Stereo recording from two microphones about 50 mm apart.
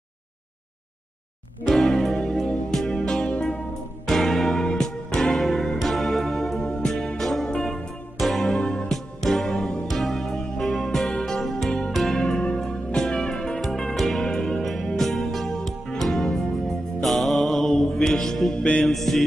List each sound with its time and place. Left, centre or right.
1.7 s music: centre
4.0 s music: centre
4.6 s music: centre
12.2 s music: centre
17.0 s mantra: centre
17.9 s music: centre
18.6 s music: left
18.9 s music: centre